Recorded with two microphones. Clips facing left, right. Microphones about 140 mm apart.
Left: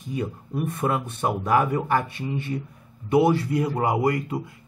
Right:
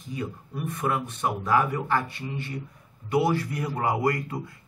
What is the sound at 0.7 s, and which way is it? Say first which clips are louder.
A man's voice: even; 25° left (ahead or behind).